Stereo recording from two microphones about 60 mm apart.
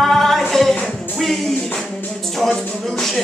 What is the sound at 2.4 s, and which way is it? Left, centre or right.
Music, centre.